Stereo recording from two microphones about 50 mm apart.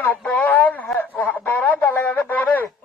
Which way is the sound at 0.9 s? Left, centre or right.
Left.